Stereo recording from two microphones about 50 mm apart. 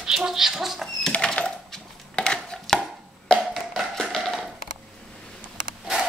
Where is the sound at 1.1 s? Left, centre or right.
Centre.